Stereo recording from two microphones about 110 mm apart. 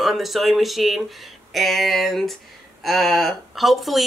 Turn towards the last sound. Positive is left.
turn(degrees=0)  # may be behind; listen again after turning